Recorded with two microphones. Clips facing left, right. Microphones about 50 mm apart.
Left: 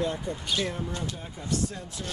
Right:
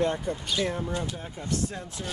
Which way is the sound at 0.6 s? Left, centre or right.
Centre.